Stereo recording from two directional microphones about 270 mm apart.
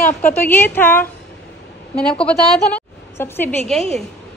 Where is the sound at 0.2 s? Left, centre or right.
Centre.